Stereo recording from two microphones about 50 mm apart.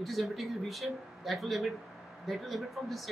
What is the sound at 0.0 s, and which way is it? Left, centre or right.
Speech, centre.